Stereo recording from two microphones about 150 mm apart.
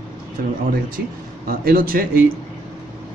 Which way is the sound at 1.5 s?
75° right (ahead or behind).